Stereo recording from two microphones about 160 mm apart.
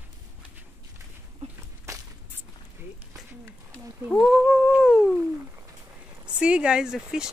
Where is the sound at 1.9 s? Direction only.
20° right (ahead or behind).